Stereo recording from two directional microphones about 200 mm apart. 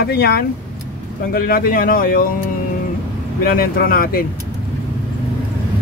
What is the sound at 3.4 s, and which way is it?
Speech, 45° left (ahead or behind).